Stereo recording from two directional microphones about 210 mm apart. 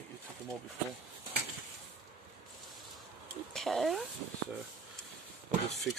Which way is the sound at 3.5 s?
Centre (ahead or behind).